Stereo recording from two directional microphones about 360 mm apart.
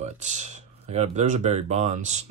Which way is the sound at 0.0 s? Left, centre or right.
Centre.